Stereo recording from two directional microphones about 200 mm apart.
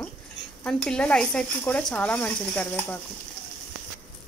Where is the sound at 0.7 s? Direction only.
5° left (ahead or behind).